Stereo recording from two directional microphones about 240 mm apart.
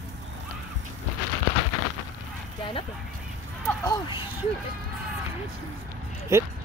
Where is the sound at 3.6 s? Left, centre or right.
Centre.